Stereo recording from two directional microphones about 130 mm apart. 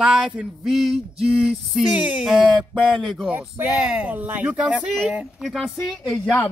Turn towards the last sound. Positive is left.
turn(degrees=5)  # may be behind; listen again after turning